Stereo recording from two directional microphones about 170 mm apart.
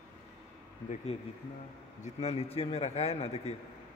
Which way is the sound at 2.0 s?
40° left (ahead or behind).